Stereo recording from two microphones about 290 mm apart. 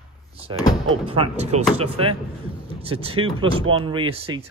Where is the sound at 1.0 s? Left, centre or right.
Centre.